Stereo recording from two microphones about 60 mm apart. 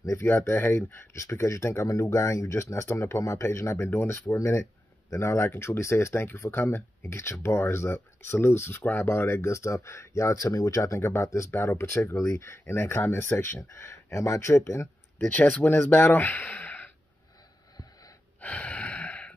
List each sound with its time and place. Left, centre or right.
0.2 s speech: left
15.1 s speech: left
18.4 s gasp: left